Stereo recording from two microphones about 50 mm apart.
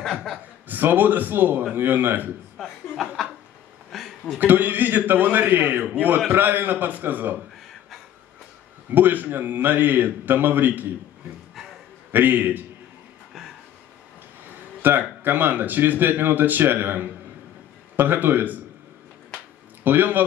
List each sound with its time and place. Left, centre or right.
0.7 s a man's voice: right
2.5 s chuckle: centre
3.9 s a sound: centre
4.4 s a man's voice: right
8.9 s a man's voice: right
12.1 s a man's voice: right
14.8 s a man's voice: right
19.8 s a man's voice: right